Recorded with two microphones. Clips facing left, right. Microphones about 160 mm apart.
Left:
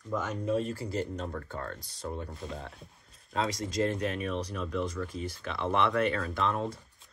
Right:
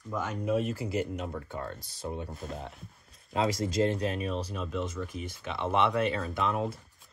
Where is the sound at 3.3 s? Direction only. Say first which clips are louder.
Right 3 dB; 25° right (ahead or behind).